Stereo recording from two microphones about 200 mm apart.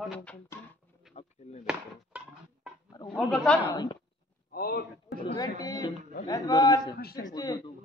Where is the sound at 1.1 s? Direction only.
Centre (ahead or behind).